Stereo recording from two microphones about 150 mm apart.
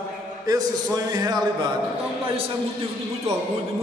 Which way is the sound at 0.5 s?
25° right (ahead or behind).